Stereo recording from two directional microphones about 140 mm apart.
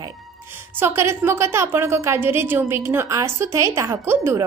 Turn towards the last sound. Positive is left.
turn(degrees=-20)  # may be behind; listen again after turning